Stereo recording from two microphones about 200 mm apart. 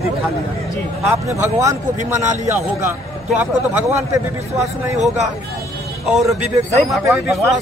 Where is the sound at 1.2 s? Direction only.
15° right (ahead or behind).